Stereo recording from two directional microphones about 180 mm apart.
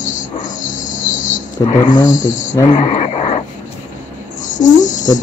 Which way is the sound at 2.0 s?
45° left (ahead or behind).